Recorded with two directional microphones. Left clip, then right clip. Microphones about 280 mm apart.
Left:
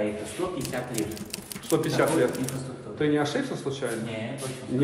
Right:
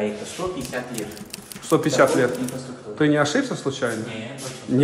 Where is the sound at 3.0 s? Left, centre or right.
Right.